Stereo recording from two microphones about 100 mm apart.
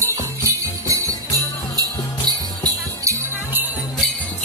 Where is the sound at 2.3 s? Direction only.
40° right (ahead or behind).